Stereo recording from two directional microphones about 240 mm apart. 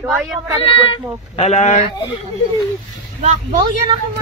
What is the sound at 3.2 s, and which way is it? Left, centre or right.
Speech, right.